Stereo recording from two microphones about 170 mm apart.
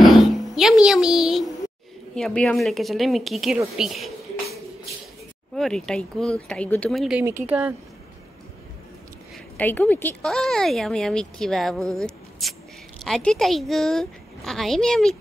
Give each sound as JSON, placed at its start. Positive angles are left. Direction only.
{"t": 0.0, "sound": "a sound", "side_deg": 0}
{"t": 2.1, "sound": "speech", "side_deg": 5}
{"t": 5.6, "sound": "speech", "side_deg": 0}
{"t": 9.6, "sound": "speech", "side_deg": 10}